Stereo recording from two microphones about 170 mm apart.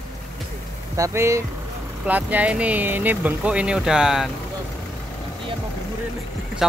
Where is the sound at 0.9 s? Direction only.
15° right (ahead or behind).